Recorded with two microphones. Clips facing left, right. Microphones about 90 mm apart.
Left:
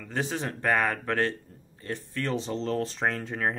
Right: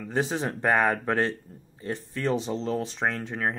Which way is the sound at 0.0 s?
20° right (ahead or behind).